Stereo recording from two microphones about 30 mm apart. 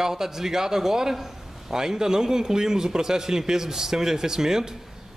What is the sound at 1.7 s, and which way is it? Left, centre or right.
A man's voice, centre.